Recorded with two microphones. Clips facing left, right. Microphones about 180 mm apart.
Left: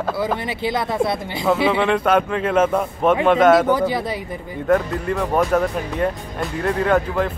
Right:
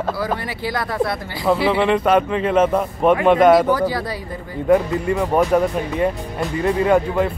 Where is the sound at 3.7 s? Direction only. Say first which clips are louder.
Even; 20° left (ahead or behind).